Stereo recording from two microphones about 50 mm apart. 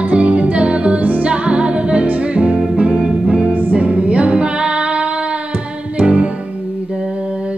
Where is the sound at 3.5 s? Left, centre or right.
Right.